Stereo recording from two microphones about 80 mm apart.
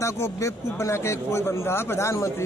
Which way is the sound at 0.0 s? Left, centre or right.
Left.